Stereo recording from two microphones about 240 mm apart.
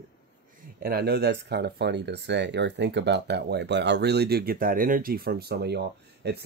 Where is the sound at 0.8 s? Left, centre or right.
Right.